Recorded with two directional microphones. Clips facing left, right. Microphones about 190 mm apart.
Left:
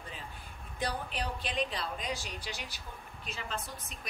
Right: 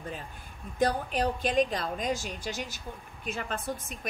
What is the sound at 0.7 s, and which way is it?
Speech, 45° right (ahead or behind).